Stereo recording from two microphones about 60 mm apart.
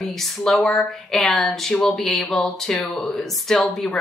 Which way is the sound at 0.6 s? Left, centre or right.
Centre.